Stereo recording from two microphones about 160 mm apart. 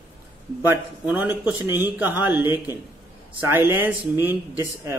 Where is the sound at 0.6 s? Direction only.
10° right (ahead or behind).